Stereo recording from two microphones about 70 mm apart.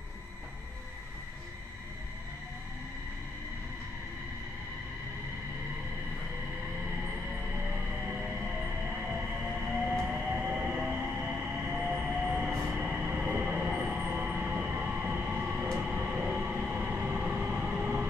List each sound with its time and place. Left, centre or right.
8.9 s whale vocalization: centre
10.0 s train: centre
13.6 s train: centre